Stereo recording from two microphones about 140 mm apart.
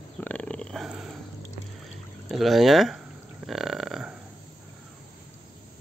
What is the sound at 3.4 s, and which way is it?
Burping, centre (ahead or behind).